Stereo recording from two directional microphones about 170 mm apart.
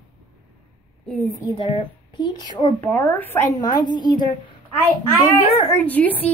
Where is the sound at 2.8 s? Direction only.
10° left (ahead or behind).